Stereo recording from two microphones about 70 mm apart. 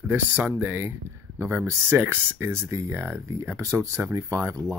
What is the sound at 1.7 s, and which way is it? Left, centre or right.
Speech, right.